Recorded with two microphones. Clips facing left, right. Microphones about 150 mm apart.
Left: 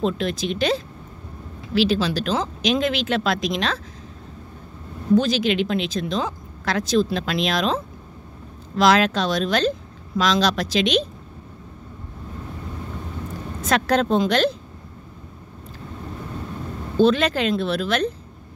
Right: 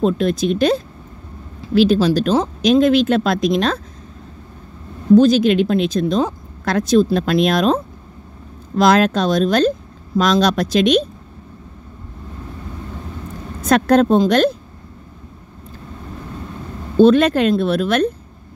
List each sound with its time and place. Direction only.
0.0 s speech: 45° right (ahead or behind)
5.1 s speech: 45° right (ahead or behind)
13.7 s speech: 45° right (ahead or behind)
17.0 s speech: 50° right (ahead or behind)